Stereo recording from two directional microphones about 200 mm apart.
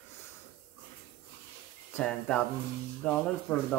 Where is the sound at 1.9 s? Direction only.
5° left (ahead or behind).